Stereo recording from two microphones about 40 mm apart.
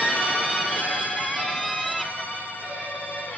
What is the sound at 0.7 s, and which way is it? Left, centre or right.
Music, left.